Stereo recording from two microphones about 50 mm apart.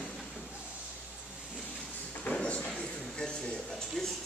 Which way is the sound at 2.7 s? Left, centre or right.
Centre.